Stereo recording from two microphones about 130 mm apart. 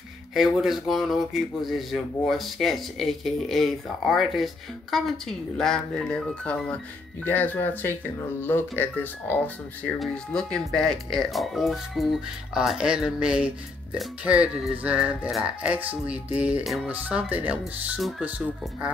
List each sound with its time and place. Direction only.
0.3 s speech: centre (ahead or behind)